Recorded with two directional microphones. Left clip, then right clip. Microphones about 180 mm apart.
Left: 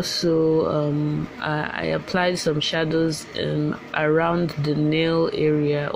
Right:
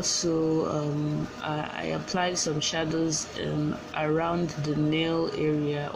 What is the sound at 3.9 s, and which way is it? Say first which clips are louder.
Speech: left 7 dB; 35° left (ahead or behind).